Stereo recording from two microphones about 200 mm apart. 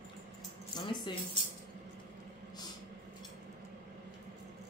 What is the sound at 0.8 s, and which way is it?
Speech, 20° left (ahead or behind).